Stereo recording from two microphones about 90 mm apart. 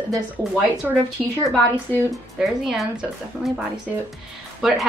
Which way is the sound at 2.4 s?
5° right (ahead or behind).